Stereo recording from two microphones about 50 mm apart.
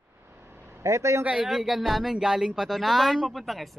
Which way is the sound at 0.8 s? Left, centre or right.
Right.